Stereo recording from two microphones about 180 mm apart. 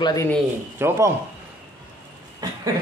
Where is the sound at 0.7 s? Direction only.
15° right (ahead or behind).